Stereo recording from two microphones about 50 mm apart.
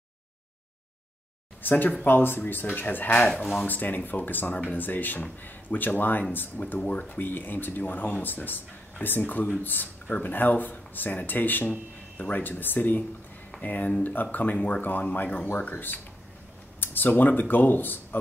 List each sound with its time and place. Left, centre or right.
1.6 s speech: left
6.9 s speech: left
7.2 s speech: left